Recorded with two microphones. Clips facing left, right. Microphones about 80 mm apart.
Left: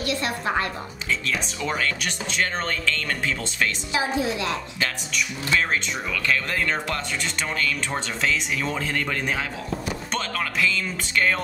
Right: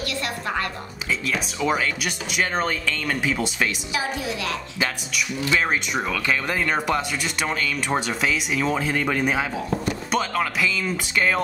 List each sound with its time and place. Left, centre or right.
0.0 s music: left
1.2 s speech: centre
3.9 s a woman's voice: left
5.5 s speech: centre